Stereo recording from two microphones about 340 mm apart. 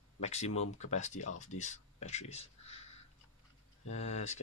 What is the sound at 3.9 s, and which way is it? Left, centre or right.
Speech, centre.